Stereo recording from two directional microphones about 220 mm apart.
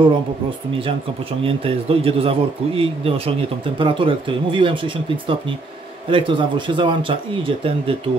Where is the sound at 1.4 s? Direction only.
25° right (ahead or behind).